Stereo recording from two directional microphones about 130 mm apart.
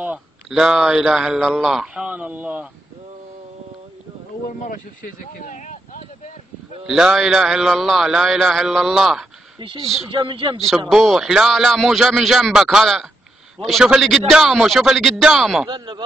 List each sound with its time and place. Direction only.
0.0 s speech: 5° right (ahead or behind)
4.5 s speech: 90° left; by 6.3 s 65° left (ahead or behind)
6.9 s speech: 5° right (ahead or behind)
10.1 s a man's voice: 40° right (ahead or behind)
10.9 s speech: centre (ahead or behind)
15.7 s a man's voice: 35° right (ahead or behind)